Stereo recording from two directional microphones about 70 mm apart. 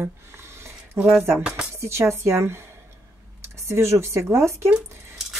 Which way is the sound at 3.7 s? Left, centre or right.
Right.